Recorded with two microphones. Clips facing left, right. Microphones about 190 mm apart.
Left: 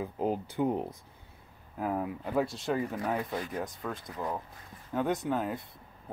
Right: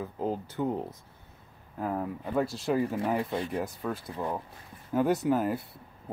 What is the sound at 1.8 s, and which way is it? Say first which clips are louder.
Speech: even; 5° left (ahead or behind).